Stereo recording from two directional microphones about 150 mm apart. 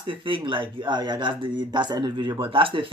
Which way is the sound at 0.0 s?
35° right (ahead or behind).